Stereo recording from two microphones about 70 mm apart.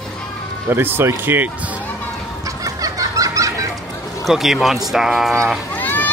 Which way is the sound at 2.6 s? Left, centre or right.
Right.